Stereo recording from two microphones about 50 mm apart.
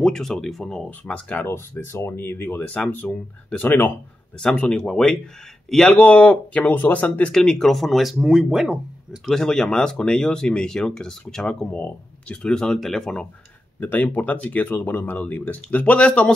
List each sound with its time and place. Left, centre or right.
0.0 s speech: centre
1.0 s speech: left
1.5 s speech: left
2.1 s speech: left
3.1 s speech: centre
3.5 s speech: left
4.4 s speech: centre
5.9 s speech: left
6.6 s speech: left
7.3 s speech: centre
9.2 s speech: centre
11.7 s speech: left
12.4 s speech: centre
13.7 s speech: left